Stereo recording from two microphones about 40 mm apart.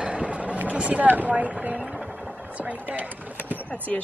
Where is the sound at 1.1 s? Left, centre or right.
Right.